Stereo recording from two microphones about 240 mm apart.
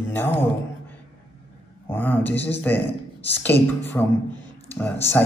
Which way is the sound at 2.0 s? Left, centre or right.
Centre.